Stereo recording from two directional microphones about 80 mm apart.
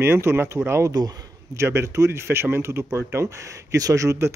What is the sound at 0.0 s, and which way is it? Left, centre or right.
Speech, right.